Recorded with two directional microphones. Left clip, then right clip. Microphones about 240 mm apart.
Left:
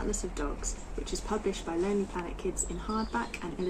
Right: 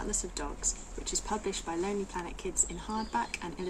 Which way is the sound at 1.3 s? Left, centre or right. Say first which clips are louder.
Left 3 dB; centre.